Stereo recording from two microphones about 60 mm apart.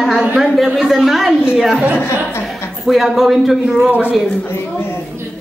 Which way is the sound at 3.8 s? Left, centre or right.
Right.